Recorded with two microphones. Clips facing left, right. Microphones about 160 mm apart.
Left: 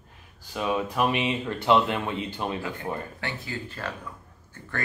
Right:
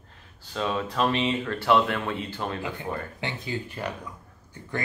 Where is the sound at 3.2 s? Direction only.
20° right (ahead or behind).